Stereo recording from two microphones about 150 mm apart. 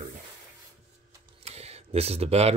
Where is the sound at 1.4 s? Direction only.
45° right (ahead or behind).